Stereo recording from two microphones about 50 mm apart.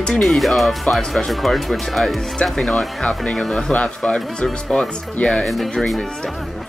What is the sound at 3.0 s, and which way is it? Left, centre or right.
Speech, left.